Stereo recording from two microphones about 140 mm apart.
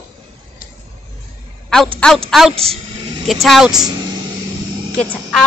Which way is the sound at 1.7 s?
5° left (ahead or behind).